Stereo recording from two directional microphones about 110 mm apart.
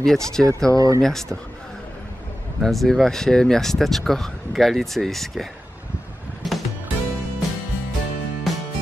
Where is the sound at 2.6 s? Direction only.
Centre (ahead or behind).